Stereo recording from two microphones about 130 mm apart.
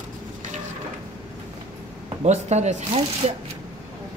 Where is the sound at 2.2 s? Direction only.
60° right (ahead or behind).